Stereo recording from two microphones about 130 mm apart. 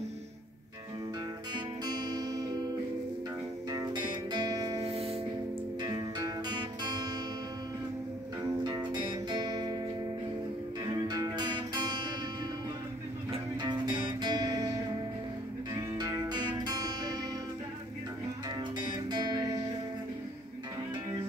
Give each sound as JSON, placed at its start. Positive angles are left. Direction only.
{"t": 1.5, "sound": "music", "side_deg": -30}
{"t": 3.7, "sound": "music", "side_deg": -35}
{"t": 4.8, "sound": "music", "side_deg": -50}
{"t": 5.8, "sound": "music", "side_deg": -30}
{"t": 8.6, "sound": "music", "side_deg": -35}
{"t": 10.9, "sound": "music", "side_deg": -30}
{"t": 13.3, "sound": "music", "side_deg": -35}
{"t": 18.8, "sound": "music", "side_deg": -35}